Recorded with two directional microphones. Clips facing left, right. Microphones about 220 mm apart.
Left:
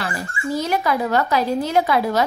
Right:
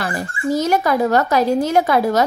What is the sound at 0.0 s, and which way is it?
Speech, 45° right (ahead or behind).